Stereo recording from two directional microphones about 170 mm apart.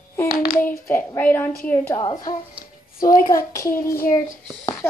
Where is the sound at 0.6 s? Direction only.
60° left (ahead or behind).